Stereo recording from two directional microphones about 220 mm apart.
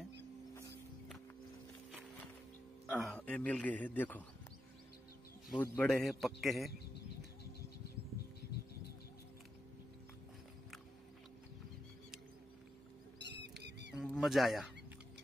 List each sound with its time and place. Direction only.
2.9 s a man's voice: centre (ahead or behind)
5.5 s a man's voice: 5° left (ahead or behind)
13.2 s squawk: 50° right (ahead or behind)
13.9 s speech: centre (ahead or behind)